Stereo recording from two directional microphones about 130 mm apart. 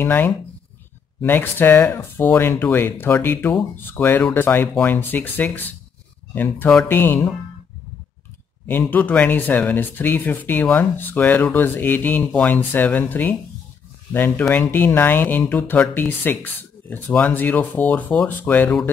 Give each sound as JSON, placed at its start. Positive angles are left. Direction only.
{"t": 0.0, "sound": "speech", "side_deg": 15}
{"t": 8.6, "sound": "speech", "side_deg": 15}